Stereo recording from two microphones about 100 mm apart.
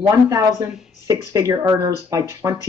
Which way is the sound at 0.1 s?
35° right (ahead or behind).